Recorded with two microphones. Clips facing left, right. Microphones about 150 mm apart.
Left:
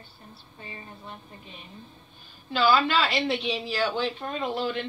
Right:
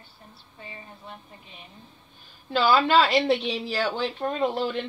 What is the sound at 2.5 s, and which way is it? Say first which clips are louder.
A woman's voice: right 2 dB; 45° right (ahead or behind).